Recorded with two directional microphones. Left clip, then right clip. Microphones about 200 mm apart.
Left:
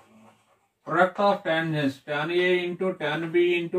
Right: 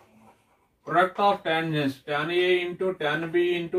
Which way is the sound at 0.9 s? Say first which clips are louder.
Even; 15° left (ahead or behind).